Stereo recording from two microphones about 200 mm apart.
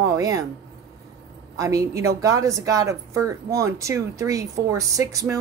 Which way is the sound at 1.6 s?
15° right (ahead or behind).